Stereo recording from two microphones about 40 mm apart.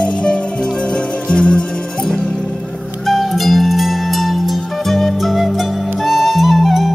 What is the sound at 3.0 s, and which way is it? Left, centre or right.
Music, centre.